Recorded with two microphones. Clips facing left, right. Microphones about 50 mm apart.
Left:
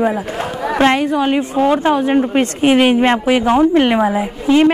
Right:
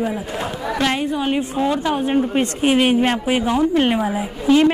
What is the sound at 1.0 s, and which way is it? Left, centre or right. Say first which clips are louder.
Speech: left 5 dB; left.